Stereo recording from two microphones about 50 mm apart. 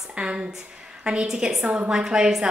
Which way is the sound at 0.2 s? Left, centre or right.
Centre.